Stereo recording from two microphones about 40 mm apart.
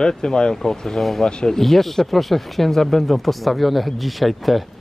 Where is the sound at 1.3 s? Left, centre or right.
Centre.